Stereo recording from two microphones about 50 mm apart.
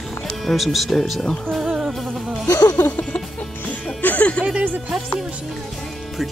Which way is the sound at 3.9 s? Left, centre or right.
Left.